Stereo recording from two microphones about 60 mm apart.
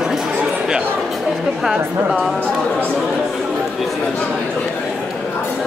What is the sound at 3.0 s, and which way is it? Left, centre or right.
Speech, centre.